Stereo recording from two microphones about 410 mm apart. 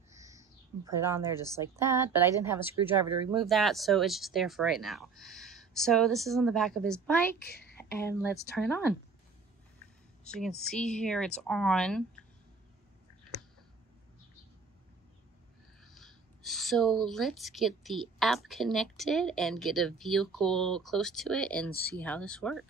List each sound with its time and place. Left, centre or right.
0.1 s a sound: centre
1.6 s speech: centre
7.3 s a child's voice: left
7.7 s speech: centre
10.2 s speech: centre
15.8 s speech: centre